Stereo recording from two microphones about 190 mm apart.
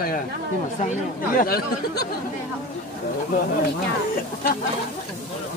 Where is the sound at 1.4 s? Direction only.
55° left (ahead or behind).